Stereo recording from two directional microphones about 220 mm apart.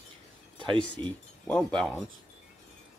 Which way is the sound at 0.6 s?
20° right (ahead or behind).